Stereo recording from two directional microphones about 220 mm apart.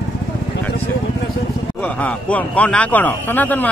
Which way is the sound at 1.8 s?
5° left (ahead or behind).